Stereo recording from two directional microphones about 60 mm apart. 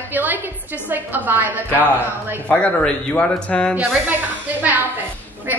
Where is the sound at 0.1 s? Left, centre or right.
Right.